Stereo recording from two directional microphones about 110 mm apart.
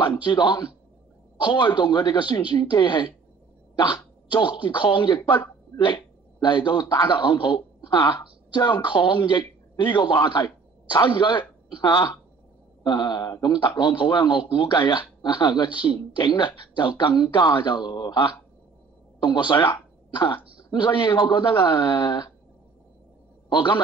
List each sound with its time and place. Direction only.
0.2 s a man's voice: 45° left (ahead or behind)
23.5 s a man's voice: 45° left (ahead or behind)